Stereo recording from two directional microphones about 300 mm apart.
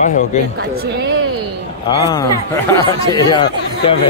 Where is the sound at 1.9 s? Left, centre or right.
Centre.